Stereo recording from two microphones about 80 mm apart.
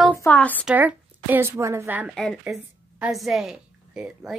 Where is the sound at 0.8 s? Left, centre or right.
Right.